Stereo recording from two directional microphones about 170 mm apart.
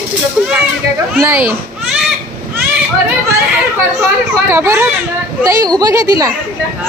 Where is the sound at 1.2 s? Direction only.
15° right (ahead or behind).